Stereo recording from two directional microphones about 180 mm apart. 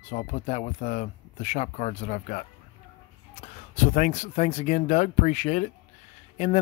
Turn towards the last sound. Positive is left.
turn(degrees=35)  # may be behind; listen again after turning